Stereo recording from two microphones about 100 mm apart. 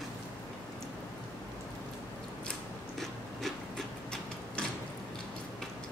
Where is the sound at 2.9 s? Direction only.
Centre (ahead or behind).